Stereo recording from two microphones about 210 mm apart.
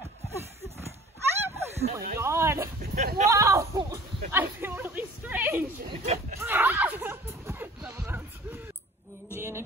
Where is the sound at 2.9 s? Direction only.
40° right (ahead or behind).